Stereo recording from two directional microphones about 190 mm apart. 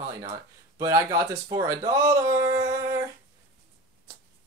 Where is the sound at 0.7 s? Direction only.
15° right (ahead or behind).